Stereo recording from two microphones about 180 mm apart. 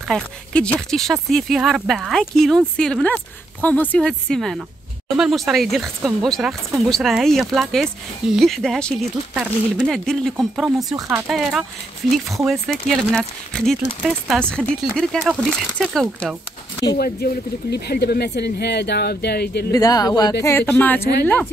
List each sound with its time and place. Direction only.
0.1 s speech: 5° left (ahead or behind)
13.1 s speech: centre (ahead or behind)
16.9 s speech: 65° left (ahead or behind)
19.7 s speech: 20° left (ahead or behind)